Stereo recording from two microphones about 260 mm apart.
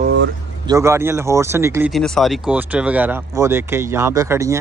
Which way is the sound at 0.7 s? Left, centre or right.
Centre.